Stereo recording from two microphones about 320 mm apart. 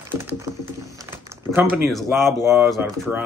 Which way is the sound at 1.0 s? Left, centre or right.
Centre.